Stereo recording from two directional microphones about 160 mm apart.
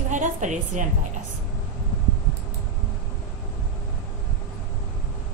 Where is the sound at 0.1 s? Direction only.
50° right (ahead or behind).